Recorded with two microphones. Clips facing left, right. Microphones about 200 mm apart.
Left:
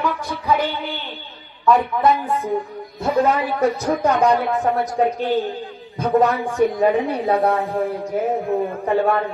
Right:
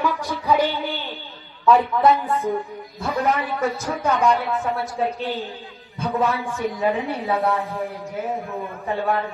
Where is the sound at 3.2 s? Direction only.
35° left (ahead or behind).